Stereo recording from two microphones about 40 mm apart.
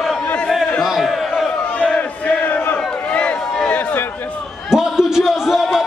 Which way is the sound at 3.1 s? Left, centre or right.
Left.